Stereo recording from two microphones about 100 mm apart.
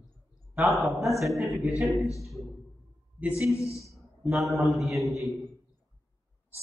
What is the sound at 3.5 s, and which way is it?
Speech, 30° left (ahead or behind).